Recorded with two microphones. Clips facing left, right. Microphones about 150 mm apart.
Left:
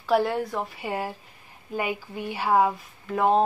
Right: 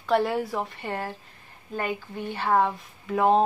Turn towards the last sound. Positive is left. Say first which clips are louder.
# right 1 dB
turn(degrees=0)  # may be behind; listen again after turning